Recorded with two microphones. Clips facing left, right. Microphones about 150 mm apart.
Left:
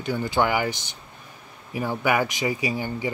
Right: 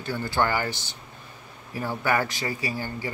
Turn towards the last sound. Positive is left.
turn(degrees=20)  # may be behind; listen again after turning